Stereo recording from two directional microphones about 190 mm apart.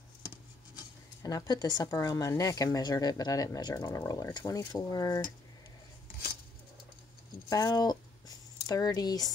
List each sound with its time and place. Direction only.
1.2 s speech: 20° left (ahead or behind)
7.4 s speech: 20° left (ahead or behind)